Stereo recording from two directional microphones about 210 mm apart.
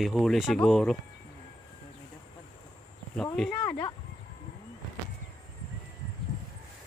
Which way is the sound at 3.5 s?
20° left (ahead or behind).